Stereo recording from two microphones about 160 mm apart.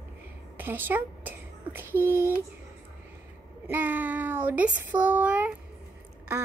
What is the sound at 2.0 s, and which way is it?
Speech, 15° right (ahead or behind).